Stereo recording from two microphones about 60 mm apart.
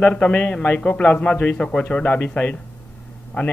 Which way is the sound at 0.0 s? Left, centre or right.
Left.